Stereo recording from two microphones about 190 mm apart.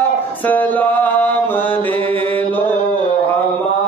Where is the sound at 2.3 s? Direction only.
10° left (ahead or behind).